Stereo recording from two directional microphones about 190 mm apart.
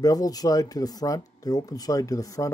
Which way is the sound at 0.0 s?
20° left (ahead or behind).